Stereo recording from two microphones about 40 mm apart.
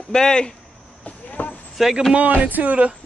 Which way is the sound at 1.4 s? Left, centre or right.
Left.